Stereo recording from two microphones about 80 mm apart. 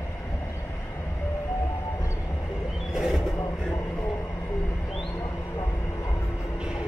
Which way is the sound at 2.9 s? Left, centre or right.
Centre.